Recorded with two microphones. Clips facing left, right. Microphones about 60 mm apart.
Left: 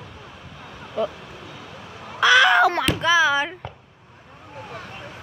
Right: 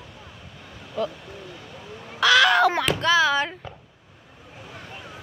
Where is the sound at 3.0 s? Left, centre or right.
Centre.